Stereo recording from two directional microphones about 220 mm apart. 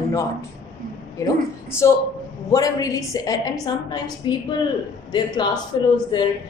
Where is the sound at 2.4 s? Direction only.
15° left (ahead or behind).